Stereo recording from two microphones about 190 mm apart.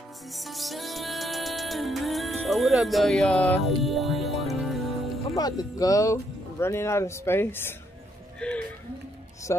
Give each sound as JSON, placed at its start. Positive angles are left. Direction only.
{"t": 0.3, "sound": "music", "side_deg": 0}
{"t": 5.3, "sound": "speech", "side_deg": 20}
{"t": 8.4, "sound": "a sound", "side_deg": 5}
{"t": 9.5, "sound": "speech", "side_deg": 15}